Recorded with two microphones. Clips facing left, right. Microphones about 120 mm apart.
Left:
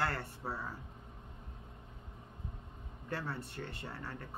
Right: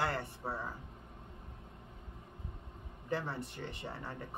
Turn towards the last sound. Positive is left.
turn(degrees=-15)  # may be behind; listen again after turning